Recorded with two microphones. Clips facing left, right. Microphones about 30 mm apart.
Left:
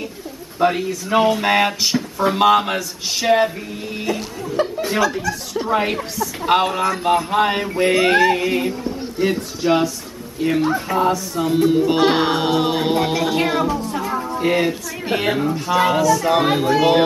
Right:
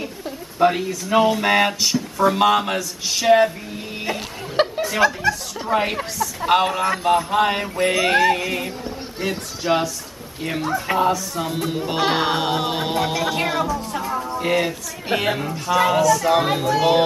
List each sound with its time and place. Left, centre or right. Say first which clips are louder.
0.6 s speech: even; centre
4.6 s a sound: right 1 dB; right
5.5 s speech: left 2 dB; centre
14.3 s music: left 2 dB; centre
15.0 s speech: left 2 dB; centre